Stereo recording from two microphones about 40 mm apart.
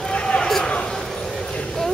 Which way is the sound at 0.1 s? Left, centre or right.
Left.